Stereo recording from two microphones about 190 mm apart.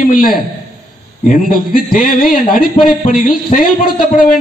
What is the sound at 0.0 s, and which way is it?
A man's voice, 45° left (ahead or behind).